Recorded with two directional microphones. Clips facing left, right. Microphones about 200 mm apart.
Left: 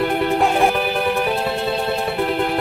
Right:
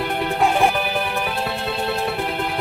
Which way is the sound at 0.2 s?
Centre (ahead or behind).